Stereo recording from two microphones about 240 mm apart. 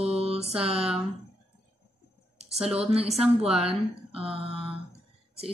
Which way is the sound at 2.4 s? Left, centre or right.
Right.